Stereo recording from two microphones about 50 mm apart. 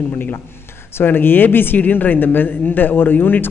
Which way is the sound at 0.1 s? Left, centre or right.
Left.